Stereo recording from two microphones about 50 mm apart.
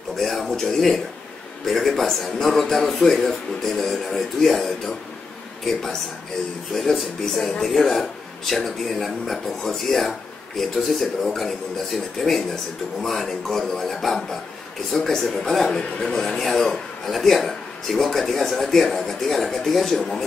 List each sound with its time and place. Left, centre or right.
0.2 s speech: centre